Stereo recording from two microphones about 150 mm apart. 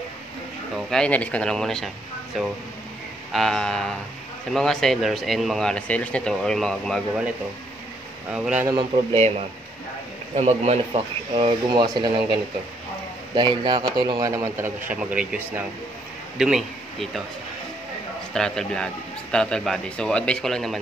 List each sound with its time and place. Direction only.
0.7 s speech: 5° left (ahead or behind)
3.3 s speech: 5° left (ahead or behind)
8.3 s speech: 5° right (ahead or behind)
8.6 s speech: 35° right (ahead or behind)
10.3 s a man's voice: 45° right (ahead or behind); by 14.7 s 20° right (ahead or behind)
14.9 s speech: 10° right (ahead or behind)
18.3 s speech: 5° left (ahead or behind)